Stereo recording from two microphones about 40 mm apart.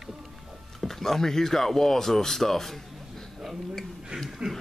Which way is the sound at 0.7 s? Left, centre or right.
Centre.